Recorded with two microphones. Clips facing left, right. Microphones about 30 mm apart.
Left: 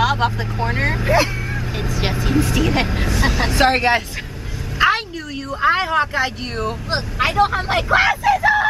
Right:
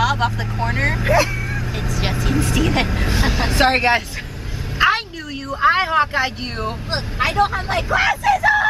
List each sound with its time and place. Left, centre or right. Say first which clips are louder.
0.0 s speech: left 1 dB; centre
4.7 s a sound: even; centre
5.5 s speech: right 1 dB; centre
7.2 s speech: left 1 dB; centre